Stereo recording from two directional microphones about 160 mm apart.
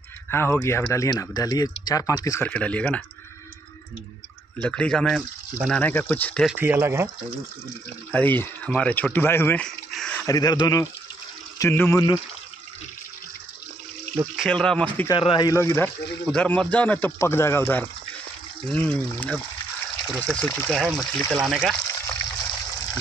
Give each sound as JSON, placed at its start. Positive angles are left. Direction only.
{"t": 0.3, "sound": "speech", "side_deg": 15}
{"t": 2.4, "sound": "speech", "side_deg": 10}
{"t": 4.6, "sound": "speech", "side_deg": 5}
{"t": 6.4, "sound": "speech", "side_deg": -10}
{"t": 8.1, "sound": "speech", "side_deg": 10}
{"t": 9.7, "sound": "a sound", "side_deg": 5}
{"t": 10.2, "sound": "speech", "side_deg": 25}
{"t": 14.2, "sound": "speech", "side_deg": -5}
{"t": 15.0, "sound": "speech", "side_deg": 30}
{"t": 21.7, "sound": "water", "side_deg": 15}